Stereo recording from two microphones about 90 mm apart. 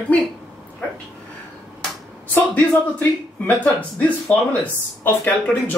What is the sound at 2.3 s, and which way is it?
Speech, 20° left (ahead or behind).